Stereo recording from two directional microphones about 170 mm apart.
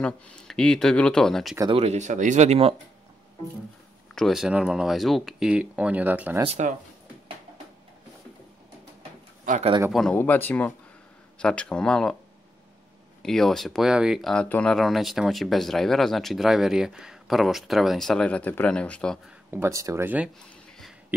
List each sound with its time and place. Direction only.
0.0 s speech: 5° left (ahead or behind)
1.6 s speech: 30° right (ahead or behind)
4.1 s speech: centre (ahead or behind)
9.4 s a sound: 45° right (ahead or behind)
9.8 s speech: centre (ahead or behind)
10.1 s speech: 10° left (ahead or behind)
13.2 s speech: 5° left (ahead or behind)
19.5 s speech: 15° right (ahead or behind)